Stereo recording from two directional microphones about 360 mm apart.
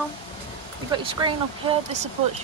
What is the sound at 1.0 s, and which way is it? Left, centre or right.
Speech, centre.